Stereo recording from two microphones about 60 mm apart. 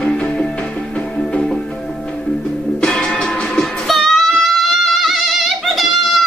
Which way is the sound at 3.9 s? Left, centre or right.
Centre.